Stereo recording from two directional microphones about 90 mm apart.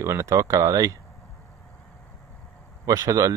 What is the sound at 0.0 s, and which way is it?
Speech, 35° right (ahead or behind).